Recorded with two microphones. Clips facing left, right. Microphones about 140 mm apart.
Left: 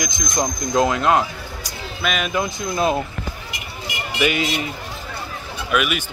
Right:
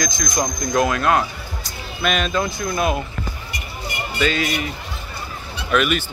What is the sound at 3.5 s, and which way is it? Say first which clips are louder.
Vehicle: right 1 dB; 90° left.